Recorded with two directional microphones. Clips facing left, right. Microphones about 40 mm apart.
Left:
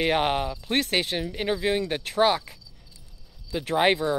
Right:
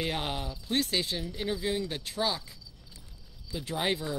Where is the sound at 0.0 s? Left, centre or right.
Left.